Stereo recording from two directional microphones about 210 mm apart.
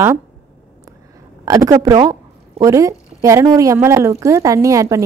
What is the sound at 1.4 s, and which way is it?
A woman's voice, 15° right (ahead or behind).